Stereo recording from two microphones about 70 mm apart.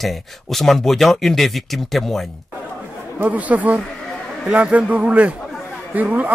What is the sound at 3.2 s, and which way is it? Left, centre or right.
A man's voice, right.